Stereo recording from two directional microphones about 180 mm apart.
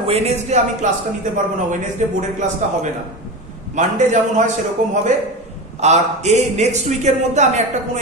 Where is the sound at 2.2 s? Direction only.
40° right (ahead or behind).